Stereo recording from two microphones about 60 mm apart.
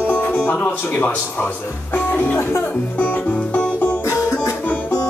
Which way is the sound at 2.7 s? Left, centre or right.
Left.